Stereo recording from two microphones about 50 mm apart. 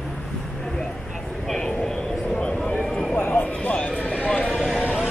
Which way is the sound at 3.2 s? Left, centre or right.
Left.